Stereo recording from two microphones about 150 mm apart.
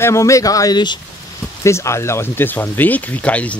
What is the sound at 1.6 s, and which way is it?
Speech, 20° left (ahead or behind).